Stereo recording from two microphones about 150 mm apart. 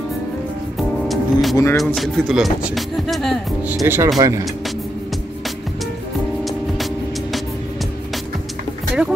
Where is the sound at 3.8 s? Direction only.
15° right (ahead or behind).